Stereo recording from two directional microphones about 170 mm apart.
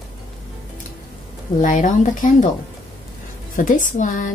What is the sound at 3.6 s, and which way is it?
Speech, 50° left (ahead or behind).